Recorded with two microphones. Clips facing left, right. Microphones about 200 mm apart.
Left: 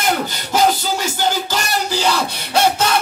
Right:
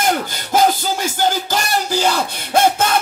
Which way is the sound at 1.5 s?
50° right (ahead or behind).